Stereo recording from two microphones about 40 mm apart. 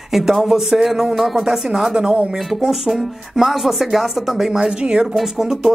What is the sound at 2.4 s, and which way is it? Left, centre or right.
Speech, centre.